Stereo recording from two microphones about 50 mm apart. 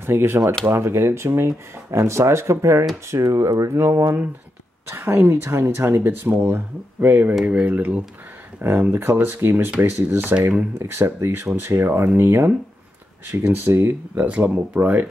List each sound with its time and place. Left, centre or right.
0.0 s speech: right
0.7 s speech: right
3.1 s speech: right
5.3 s speech: right
8.6 s speech: right
11.1 s speech: right
13.3 s speech: right
14.1 s speech: right
14.8 s speech: right